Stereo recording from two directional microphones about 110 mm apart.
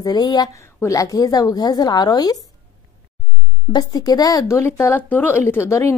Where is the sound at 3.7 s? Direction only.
35° left (ahead or behind).